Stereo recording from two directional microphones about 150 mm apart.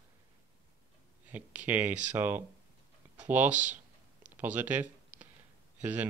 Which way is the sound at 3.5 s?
55° right (ahead or behind).